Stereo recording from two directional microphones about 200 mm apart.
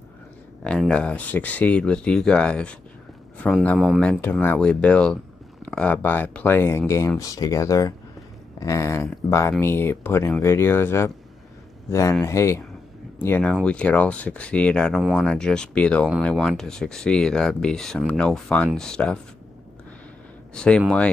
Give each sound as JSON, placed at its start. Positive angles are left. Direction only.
{"t": 0.7, "sound": "speech", "side_deg": 5}
{"t": 20.5, "sound": "speech", "side_deg": 5}